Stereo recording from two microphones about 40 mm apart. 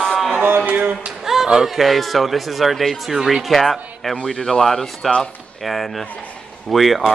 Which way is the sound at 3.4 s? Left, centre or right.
Centre.